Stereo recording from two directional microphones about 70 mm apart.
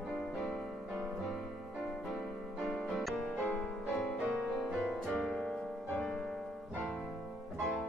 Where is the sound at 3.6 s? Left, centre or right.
Centre.